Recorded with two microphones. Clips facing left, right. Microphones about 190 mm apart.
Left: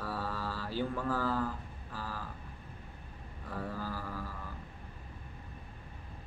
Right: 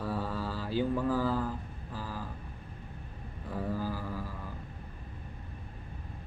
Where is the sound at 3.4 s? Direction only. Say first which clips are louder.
Right 5 dB; 15° right (ahead or behind).